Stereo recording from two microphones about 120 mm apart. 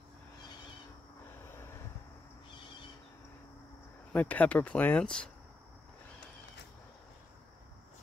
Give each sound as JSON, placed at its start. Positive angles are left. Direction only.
{"t": 1.5, "sound": "vehicle", "side_deg": 20}
{"t": 4.1, "sound": "speech", "side_deg": 15}